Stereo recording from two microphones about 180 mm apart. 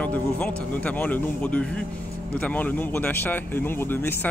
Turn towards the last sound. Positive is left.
turn(degrees=10)  # may be behind; listen again after turning